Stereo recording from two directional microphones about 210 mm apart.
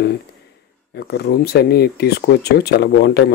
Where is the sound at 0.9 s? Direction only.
50° left (ahead or behind).